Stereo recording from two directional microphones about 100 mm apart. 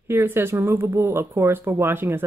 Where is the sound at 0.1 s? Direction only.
25° right (ahead or behind).